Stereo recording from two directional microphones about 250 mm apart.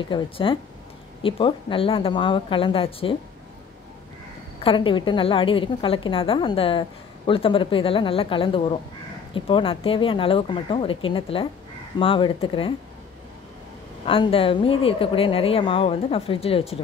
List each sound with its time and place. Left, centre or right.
0.1 s a woman's voice: centre
4.6 s a woman's voice: left
14.0 s a woman's voice: left